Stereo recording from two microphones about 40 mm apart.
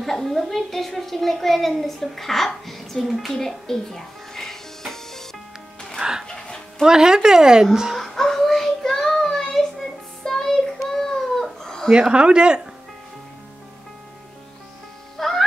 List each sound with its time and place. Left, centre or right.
0.0 s a child's voice: centre
3.3 s music: centre
5.9 s music: centre
6.2 s music: left
6.8 s speech: centre
8.2 s child singing: centre
11.6 s a sound: centre
11.9 s speech: right
15.1 s music: centre